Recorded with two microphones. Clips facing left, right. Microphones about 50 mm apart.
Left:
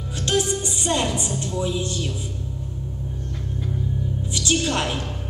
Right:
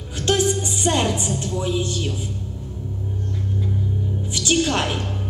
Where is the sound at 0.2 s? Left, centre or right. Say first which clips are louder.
Right 3 dB; right.